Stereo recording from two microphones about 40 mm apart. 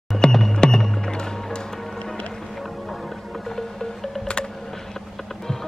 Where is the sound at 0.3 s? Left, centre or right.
Centre.